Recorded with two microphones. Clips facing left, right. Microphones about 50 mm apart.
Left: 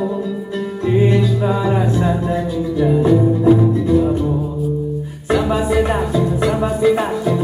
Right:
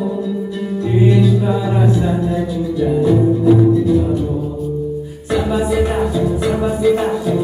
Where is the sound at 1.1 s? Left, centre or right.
Centre.